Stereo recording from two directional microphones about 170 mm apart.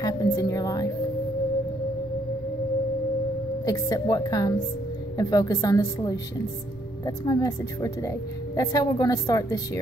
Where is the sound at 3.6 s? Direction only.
20° left (ahead or behind).